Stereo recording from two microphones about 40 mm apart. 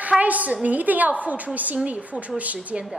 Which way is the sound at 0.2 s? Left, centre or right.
Right.